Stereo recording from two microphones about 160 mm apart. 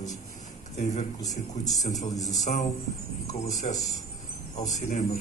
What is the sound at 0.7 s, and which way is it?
Speech, 50° left (ahead or behind).